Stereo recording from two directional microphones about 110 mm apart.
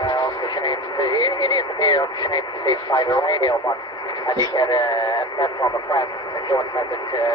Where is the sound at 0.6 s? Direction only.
40° left (ahead or behind).